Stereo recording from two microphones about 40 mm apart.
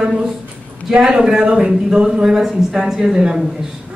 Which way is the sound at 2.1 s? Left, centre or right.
Centre.